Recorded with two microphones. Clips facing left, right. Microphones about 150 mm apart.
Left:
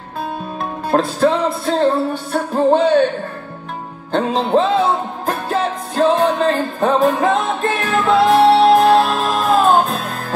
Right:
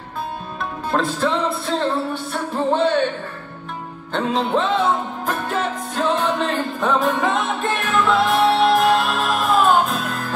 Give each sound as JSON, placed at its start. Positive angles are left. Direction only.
{"t": 0.6, "sound": "music", "side_deg": 40}
{"t": 4.1, "sound": "music", "side_deg": 35}